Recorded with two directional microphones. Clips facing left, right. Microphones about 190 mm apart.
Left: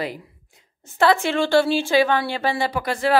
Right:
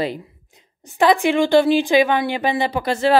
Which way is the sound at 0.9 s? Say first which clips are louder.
Right 3 dB; 15° right (ahead or behind).